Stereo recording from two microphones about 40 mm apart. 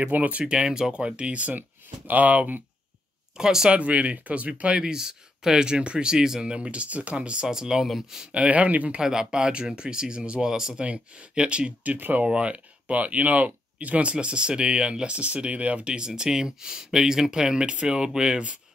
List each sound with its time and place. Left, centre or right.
0.1 s speech: right
0.4 s speech: right
0.7 s speech: centre; by 2.6 s right
3.3 s speech: centre
3.7 s speech: right
4.7 s speech: centre
7.4 s speech: centre
7.8 s speech: centre
8.2 s speech: right
9.0 s speech: centre; by 14.1 s right
14.1 s speech: right